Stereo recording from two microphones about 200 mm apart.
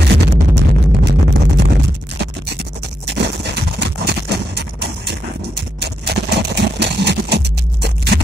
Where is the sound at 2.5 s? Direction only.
60° right (ahead or behind).